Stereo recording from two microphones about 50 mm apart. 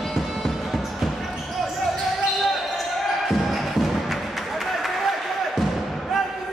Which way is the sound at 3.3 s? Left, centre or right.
Centre.